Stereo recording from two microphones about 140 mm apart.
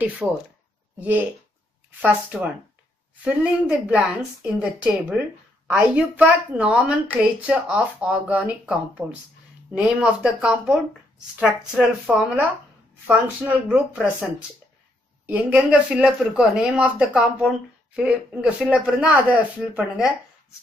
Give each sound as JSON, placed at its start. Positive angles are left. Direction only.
{"t": 0.2, "sound": "speech", "side_deg": -10}
{"t": 1.9, "sound": "speech", "side_deg": -10}
{"t": 15.2, "sound": "speech", "side_deg": -10}